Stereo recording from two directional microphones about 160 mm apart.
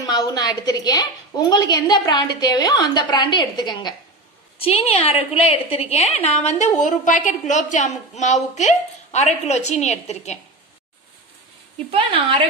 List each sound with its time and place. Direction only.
0.0 s a woman's voice: 25° left (ahead or behind)
4.6 s a woman's voice: 40° left (ahead or behind)
11.9 s a woman's voice: 35° right (ahead or behind)